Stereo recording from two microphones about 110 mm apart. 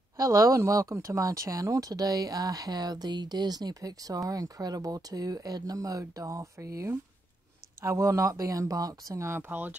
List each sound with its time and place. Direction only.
0.2 s speech: 30° right (ahead or behind); by 9.8 s 15° right (ahead or behind)